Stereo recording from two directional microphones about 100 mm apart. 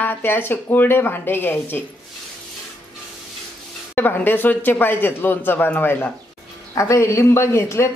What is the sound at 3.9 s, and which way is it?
A woman's voice, 20° left (ahead or behind).